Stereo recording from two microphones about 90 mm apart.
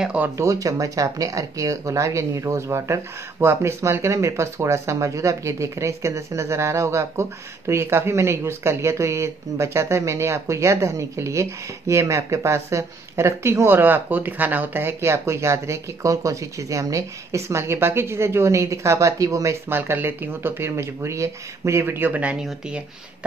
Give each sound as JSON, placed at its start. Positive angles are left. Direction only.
{"t": 0.0, "sound": "speech", "side_deg": -15}
{"t": 0.4, "sound": "speech", "side_deg": -35}
{"t": 19.7, "sound": "speech", "side_deg": -25}